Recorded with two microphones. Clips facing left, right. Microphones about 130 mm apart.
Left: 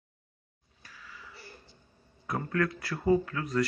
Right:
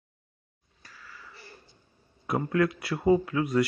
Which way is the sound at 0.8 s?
10° left (ahead or behind).